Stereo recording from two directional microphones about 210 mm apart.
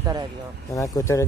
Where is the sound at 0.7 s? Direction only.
15° left (ahead or behind).